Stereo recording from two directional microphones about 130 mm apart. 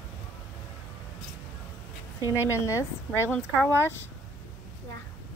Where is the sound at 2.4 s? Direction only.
20° left (ahead or behind).